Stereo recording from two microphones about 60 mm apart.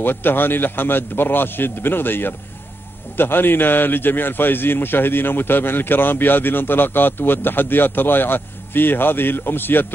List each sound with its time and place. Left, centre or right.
0.0 s a man's voice: left